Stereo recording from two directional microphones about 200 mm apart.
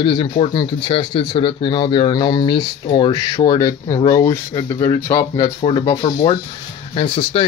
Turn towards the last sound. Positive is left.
turn(degrees=25)  # may be behind; listen again after turning